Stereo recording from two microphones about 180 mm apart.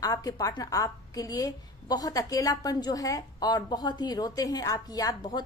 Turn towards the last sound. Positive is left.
turn(degrees=20)  # may be behind; listen again after turning